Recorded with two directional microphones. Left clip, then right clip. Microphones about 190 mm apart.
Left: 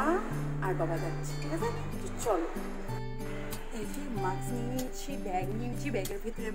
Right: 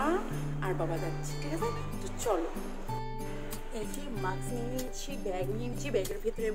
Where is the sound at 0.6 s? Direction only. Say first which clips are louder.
Left 1 dB; 5° right (ahead or behind).